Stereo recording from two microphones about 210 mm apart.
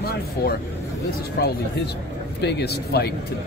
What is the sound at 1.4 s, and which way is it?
Speech, 50° left (ahead or behind).